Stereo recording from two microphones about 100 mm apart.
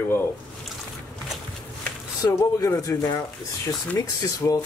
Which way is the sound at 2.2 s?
30° left (ahead or behind).